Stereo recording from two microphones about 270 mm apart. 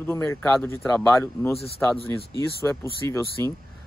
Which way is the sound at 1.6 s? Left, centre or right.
Left.